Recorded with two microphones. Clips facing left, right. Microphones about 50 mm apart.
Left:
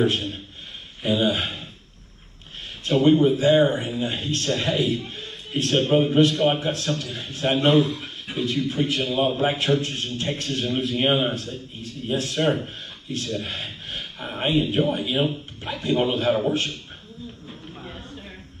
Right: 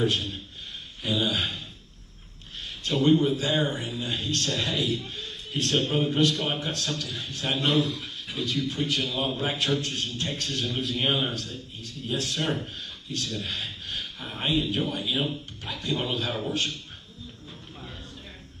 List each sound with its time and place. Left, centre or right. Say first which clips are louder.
0.0 s a man's voice: left 4 dB; left
2.8 s a man's voice: left 5 dB; left
17.8 s a sound: left 4 dB; left